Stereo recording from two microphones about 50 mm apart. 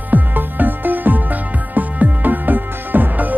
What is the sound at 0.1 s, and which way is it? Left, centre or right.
Music, right.